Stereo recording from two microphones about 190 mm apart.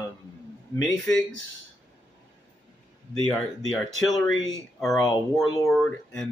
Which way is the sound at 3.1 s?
5° left (ahead or behind).